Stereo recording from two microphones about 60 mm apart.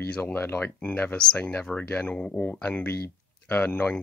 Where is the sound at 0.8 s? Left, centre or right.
Left.